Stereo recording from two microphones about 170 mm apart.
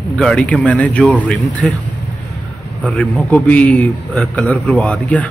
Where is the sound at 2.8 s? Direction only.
10° left (ahead or behind).